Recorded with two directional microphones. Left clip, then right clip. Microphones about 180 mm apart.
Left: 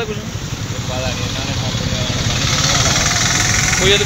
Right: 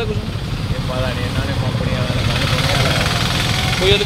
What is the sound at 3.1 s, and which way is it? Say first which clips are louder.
Vehicle: left 3 dB; 40° right (ahead or behind).